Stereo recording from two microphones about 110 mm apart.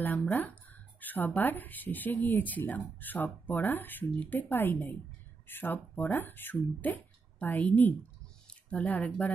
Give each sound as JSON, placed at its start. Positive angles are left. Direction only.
{"t": 0.0, "sound": "speech", "side_deg": 15}